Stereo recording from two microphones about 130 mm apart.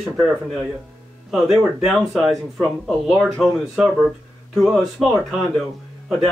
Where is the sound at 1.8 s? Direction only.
Centre (ahead or behind).